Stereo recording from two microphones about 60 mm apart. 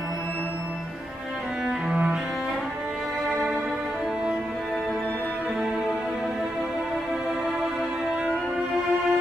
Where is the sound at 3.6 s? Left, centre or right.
Centre.